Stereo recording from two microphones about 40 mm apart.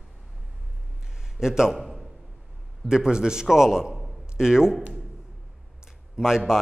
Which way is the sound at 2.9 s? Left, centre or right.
Centre.